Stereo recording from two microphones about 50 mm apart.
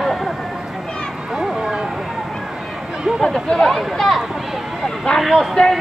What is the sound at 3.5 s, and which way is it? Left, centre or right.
Speech, centre.